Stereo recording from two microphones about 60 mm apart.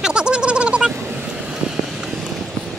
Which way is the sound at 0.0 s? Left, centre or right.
Centre.